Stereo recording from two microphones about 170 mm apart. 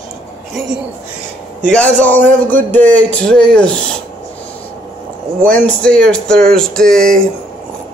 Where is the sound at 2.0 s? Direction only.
10° left (ahead or behind).